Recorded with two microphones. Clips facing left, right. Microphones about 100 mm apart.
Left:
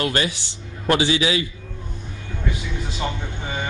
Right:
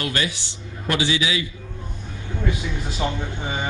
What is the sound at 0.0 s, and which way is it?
A man's voice, 35° left (ahead or behind).